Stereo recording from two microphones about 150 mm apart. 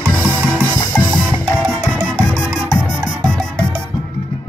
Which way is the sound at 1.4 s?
5° left (ahead or behind).